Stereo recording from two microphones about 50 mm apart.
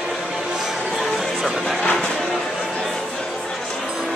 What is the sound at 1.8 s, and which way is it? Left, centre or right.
Vehicle, left.